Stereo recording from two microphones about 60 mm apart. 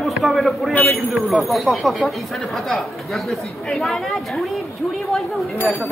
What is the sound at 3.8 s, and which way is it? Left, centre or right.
Speech, centre.